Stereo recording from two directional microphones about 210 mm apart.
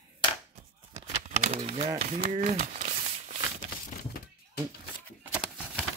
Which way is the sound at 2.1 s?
40° right (ahead or behind).